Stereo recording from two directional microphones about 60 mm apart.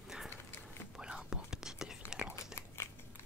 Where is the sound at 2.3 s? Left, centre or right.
Left.